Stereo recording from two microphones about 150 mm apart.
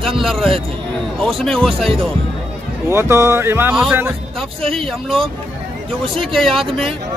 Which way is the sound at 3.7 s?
5° right (ahead or behind).